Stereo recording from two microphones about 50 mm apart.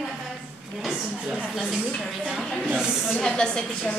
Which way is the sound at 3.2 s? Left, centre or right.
Centre.